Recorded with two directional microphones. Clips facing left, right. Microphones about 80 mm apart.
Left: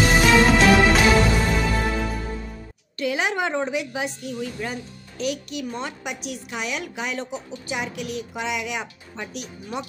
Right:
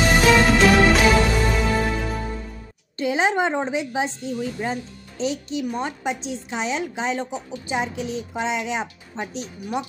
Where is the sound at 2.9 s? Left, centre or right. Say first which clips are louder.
Right 3 dB; right.